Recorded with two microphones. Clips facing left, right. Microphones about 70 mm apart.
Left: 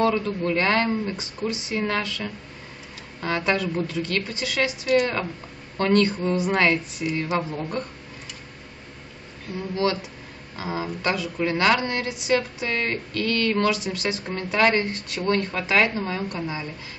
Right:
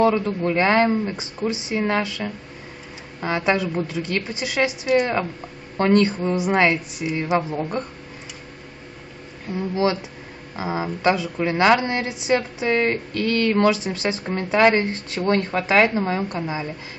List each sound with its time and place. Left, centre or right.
0.0 s a woman's voice: right
9.5 s a woman's voice: right